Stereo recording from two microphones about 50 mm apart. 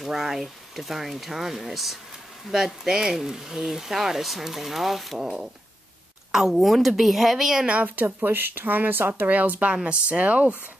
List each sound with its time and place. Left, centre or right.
0.0 s speech: centre
5.2 s speech: centre
7.8 s speech: right